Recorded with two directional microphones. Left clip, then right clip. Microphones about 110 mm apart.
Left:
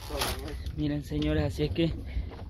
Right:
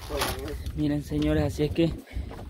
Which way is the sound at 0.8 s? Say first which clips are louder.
Right 4 dB; 10° right (ahead or behind).